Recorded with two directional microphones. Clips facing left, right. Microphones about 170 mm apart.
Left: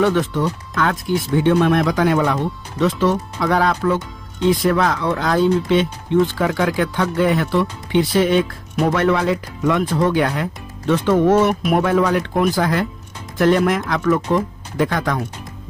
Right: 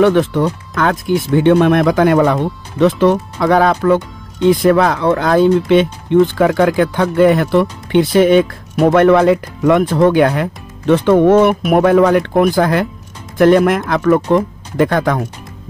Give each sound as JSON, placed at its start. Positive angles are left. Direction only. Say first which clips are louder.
{"t": 0.0, "sound": "speech", "louder": "right 6 dB", "side_deg": -60}